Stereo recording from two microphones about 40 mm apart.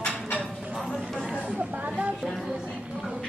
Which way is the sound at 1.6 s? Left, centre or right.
Right.